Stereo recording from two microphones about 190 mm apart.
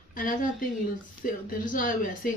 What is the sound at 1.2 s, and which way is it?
Speech, 50° left (ahead or behind).